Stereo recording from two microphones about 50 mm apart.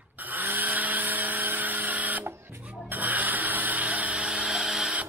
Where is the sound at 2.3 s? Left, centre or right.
Right.